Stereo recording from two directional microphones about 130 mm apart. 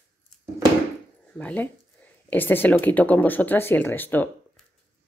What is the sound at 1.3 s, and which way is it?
Speech, 10° left (ahead or behind).